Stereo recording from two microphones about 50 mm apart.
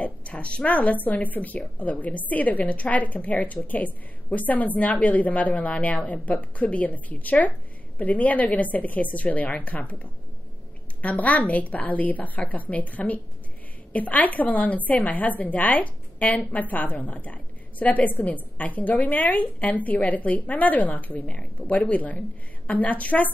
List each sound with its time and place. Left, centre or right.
0.0 s a woman's voice: left